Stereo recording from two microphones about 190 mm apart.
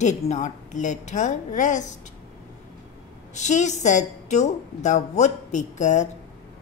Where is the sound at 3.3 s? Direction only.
40° left (ahead or behind).